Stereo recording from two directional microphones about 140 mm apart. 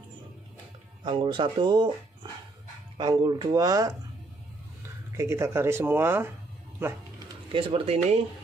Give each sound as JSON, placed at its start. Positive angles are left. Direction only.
{"t": 1.0, "sound": "speech", "side_deg": -35}
{"t": 3.0, "sound": "speech", "side_deg": -30}
{"t": 5.1, "sound": "speech", "side_deg": -20}
{"t": 7.5, "sound": "speech", "side_deg": -40}